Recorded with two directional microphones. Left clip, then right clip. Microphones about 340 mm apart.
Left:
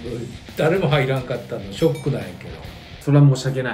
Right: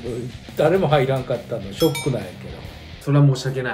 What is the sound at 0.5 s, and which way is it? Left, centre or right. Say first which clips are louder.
Speech: right 2 dB; centre.